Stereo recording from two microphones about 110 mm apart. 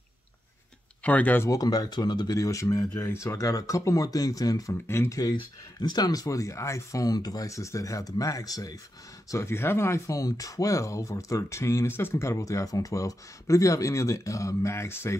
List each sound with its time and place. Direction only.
1.0 s speech: 15° left (ahead or behind)
1.5 s speech: 35° left (ahead or behind)
5.2 s speech: 40° left (ahead or behind)
9.3 s speech: 20° left (ahead or behind)